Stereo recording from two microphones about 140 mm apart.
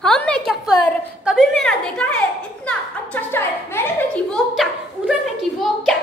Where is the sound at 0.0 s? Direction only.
5° left (ahead or behind).